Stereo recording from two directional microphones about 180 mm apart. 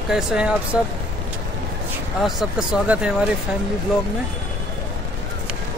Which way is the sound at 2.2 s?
Centre (ahead or behind).